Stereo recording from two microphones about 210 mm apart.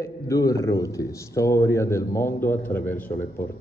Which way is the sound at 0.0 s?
15° left (ahead or behind).